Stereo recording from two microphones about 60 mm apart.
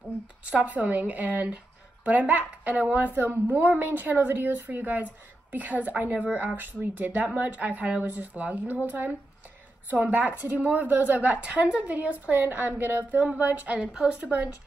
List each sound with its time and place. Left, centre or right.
0.5 s speech: right